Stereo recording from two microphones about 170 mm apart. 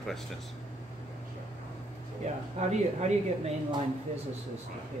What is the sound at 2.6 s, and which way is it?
Speech, 40° right (ahead or behind).